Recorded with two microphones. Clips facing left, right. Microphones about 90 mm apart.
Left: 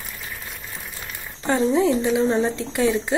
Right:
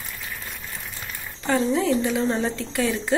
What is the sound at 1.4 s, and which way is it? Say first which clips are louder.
A woman's voice: left 3 dB; 25° left (ahead or behind).